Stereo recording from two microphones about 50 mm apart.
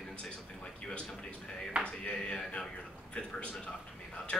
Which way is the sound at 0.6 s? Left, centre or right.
Centre.